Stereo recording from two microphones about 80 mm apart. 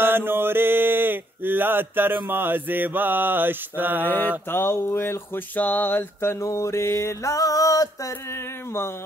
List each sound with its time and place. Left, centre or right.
0.0 s mantra: right
4.5 s music: left
5.6 s a sound: left
6.4 s music: left